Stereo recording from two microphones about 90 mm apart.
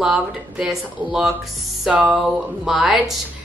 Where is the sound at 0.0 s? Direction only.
10° right (ahead or behind).